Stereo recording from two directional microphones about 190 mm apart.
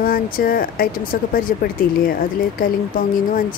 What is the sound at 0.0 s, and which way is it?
Speech, 50° left (ahead or behind).